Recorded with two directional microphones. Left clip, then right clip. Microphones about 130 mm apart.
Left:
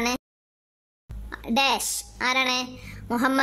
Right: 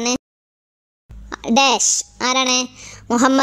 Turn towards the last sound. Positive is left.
turn(degrees=-20)  # may be behind; listen again after turning